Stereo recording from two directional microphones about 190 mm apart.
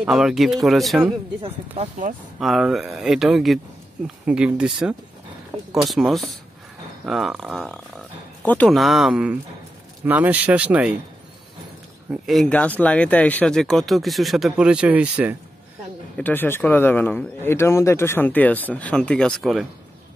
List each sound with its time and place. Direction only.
0.0 s speech: 5° right (ahead or behind)
1.4 s speech: 40° right (ahead or behind)
2.4 s speech: centre (ahead or behind)
12.1 s speech: centre (ahead or behind)
16.2 s speech: 10° left (ahead or behind)